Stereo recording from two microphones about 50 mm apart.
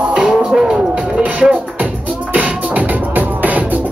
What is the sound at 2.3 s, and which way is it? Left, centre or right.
Music, right.